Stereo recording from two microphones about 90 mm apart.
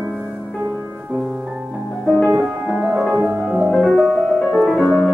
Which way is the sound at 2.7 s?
15° right (ahead or behind).